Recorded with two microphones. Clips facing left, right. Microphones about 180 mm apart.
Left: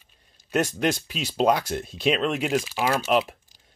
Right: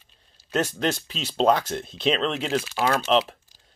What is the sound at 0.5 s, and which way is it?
Speech, 10° left (ahead or behind).